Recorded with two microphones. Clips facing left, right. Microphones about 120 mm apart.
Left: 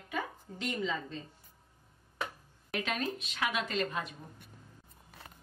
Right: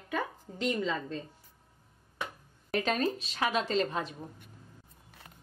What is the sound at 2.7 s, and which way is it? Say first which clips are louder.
A woman's voice: right 5 dB; 35° right (ahead or behind).